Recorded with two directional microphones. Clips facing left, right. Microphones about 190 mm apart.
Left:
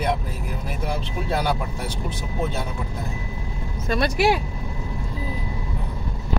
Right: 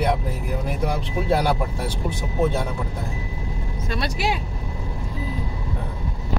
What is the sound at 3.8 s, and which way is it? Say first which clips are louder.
Speech: left 5 dB; 55° left (ahead or behind).